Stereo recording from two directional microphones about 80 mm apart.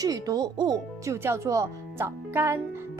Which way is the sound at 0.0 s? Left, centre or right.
Right.